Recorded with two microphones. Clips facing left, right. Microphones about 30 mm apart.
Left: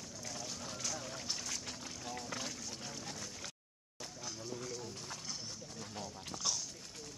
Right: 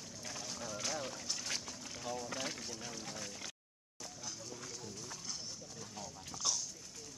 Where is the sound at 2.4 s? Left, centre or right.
Right.